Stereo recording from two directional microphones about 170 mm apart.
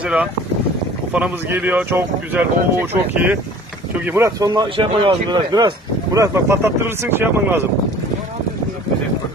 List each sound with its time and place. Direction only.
0.0 s speech: 5° right (ahead or behind)